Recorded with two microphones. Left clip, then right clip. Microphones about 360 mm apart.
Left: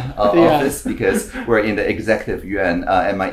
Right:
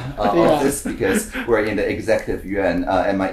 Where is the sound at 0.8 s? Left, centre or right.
Right.